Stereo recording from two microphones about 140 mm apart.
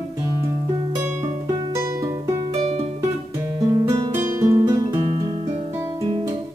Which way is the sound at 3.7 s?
30° right (ahead or behind).